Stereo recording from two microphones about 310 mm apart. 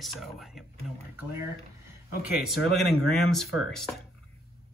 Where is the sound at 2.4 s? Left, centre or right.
Centre.